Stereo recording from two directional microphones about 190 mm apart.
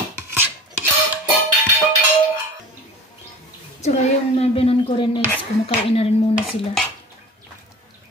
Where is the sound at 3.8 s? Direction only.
35° left (ahead or behind).